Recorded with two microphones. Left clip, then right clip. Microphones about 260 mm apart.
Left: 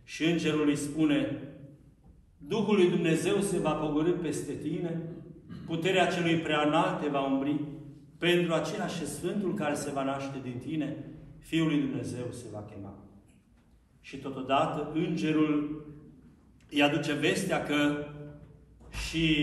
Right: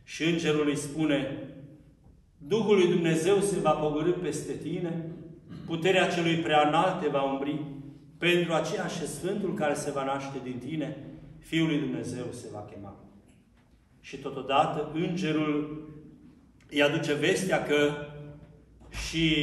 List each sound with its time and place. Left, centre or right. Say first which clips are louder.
0.1 s a man's voice: right 2 dB; centre
2.4 s a man's voice: right 3 dB; centre
14.0 s a man's voice: right 2 dB; centre
16.7 s a man's voice: right 2 dB; centre